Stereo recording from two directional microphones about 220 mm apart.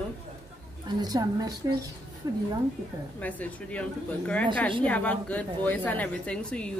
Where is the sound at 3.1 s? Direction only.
5° left (ahead or behind).